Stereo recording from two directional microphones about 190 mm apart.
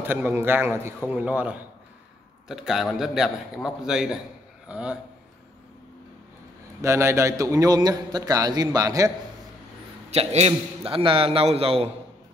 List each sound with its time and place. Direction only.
0.0 s a man's voice: 10° right (ahead or behind)
6.8 s a man's voice: 15° right (ahead or behind)
10.1 s a man's voice: 35° right (ahead or behind)